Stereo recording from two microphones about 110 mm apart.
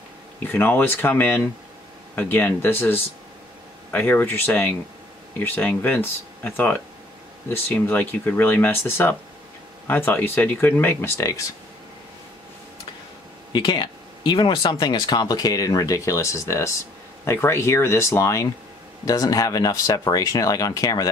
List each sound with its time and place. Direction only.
0.4 s speech: 20° left (ahead or behind)
13.5 s speech: 45° left (ahead or behind)